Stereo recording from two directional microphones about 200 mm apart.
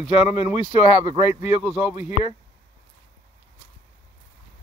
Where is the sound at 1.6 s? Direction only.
5° right (ahead or behind).